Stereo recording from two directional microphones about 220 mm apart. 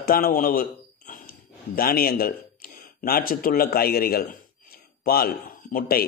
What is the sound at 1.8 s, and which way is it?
A man's voice, 40° left (ahead or behind).